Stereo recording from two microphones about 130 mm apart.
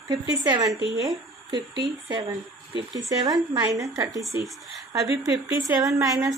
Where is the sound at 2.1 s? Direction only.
30° right (ahead or behind).